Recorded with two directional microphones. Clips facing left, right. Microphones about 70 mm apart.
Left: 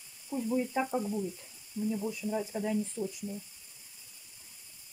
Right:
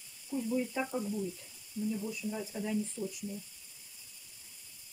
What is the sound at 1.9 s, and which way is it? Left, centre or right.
Speech, left.